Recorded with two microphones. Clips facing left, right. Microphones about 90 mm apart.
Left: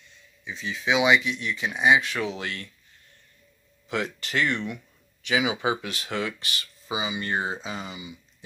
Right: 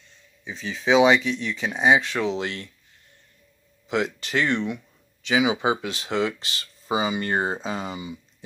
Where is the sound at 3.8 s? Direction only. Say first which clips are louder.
Right 4 dB; 20° right (ahead or behind).